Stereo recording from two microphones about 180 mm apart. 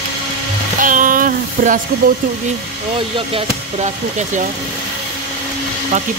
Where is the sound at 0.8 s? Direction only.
50° right (ahead or behind).